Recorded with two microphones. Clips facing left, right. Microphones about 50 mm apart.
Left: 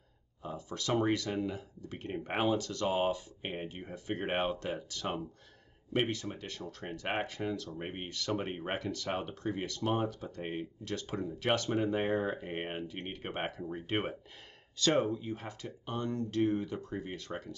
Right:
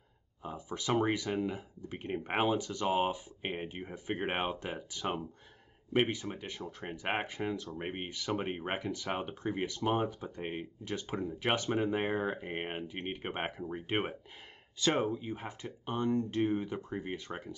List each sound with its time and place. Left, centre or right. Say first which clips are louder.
0.4 s speech: even; centre